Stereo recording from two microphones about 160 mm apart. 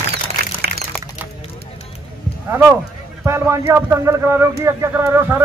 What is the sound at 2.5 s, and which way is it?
A man's voice, 15° right (ahead or behind).